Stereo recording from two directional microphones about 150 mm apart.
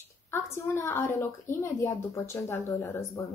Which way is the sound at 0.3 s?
20° left (ahead or behind).